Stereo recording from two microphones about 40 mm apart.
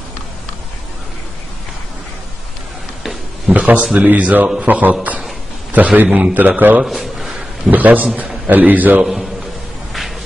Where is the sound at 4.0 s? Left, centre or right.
Right.